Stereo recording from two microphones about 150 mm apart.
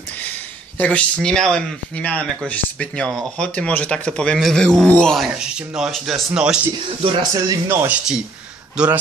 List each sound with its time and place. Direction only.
0.7 s speech: 10° left (ahead or behind)
7.3 s speech: 20° right (ahead or behind)